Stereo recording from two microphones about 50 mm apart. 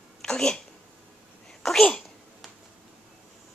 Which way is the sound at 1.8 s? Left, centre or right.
Left.